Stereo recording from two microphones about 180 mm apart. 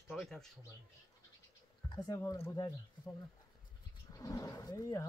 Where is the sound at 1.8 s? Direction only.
20° left (ahead or behind).